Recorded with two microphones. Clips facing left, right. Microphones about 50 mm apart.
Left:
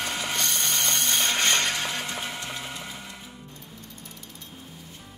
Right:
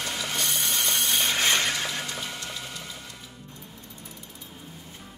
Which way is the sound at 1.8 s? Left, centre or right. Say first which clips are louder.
Left 1 dB; centre.